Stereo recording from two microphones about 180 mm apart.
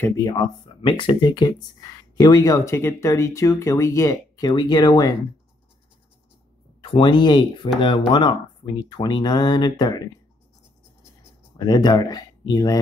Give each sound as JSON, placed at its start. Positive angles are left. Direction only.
{"t": 0.0, "sound": "speech", "side_deg": 20}
{"t": 6.8, "sound": "speech", "side_deg": 25}
{"t": 11.5, "sound": "speech", "side_deg": 20}